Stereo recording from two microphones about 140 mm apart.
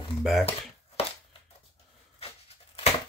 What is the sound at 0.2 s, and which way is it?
Speech, centre (ahead or behind).